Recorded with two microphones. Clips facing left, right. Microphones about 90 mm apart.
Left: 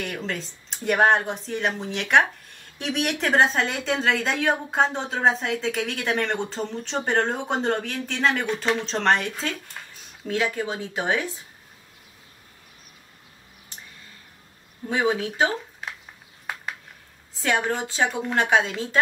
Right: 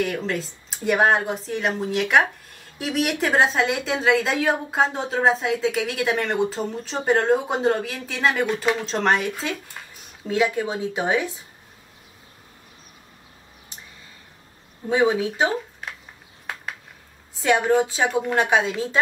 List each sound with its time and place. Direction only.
0.0 s speech: 5° right (ahead or behind)
17.5 s a woman's voice: 10° right (ahead or behind)